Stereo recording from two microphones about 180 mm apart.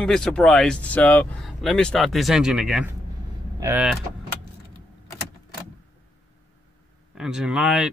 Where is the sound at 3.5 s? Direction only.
15° right (ahead or behind).